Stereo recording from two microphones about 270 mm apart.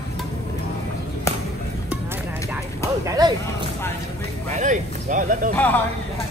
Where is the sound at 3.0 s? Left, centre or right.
Centre.